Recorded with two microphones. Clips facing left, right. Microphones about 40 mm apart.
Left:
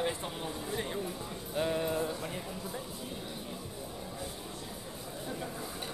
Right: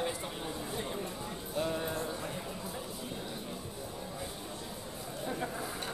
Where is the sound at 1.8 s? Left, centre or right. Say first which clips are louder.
Left 3 dB; centre.